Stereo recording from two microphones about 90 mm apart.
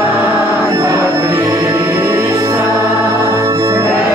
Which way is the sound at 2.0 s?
35° right (ahead or behind).